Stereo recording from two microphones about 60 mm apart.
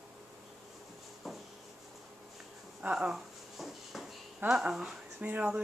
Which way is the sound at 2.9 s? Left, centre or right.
Centre.